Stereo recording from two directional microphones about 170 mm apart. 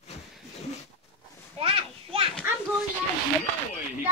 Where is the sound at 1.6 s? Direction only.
35° right (ahead or behind).